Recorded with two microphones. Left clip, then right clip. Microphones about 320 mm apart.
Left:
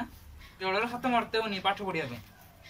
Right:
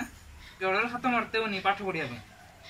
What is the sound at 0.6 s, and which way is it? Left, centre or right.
Speech, left.